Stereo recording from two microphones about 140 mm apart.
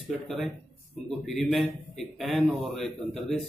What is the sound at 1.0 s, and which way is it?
A man's voice, centre (ahead or behind).